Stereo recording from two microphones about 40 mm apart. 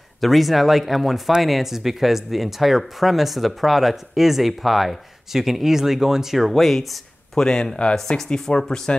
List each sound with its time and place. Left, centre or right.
0.2 s speech: centre
7.3 s speech: centre